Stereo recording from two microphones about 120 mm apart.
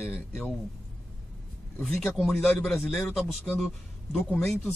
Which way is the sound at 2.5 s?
5° left (ahead or behind).